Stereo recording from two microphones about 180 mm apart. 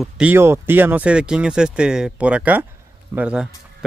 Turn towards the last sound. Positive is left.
turn(degrees=-5)  # may be behind; listen again after turning